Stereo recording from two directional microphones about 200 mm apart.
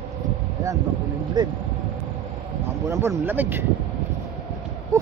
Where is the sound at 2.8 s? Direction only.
15° right (ahead or behind).